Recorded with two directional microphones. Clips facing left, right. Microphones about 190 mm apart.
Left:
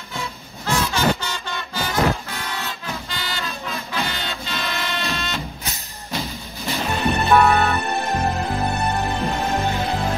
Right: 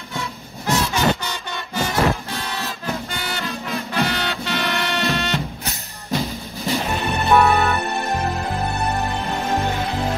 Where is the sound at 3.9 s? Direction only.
70° right (ahead or behind).